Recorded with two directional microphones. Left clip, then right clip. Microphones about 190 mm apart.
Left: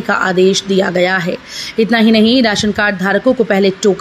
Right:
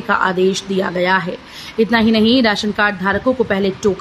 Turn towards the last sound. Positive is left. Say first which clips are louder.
# left 5 dB
turn(degrees=15)  # may be behind; listen again after turning